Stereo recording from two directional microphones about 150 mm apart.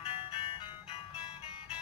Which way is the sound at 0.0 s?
40° left (ahead or behind).